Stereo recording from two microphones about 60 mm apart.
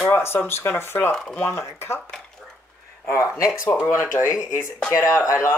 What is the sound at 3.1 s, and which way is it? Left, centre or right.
Speech, left.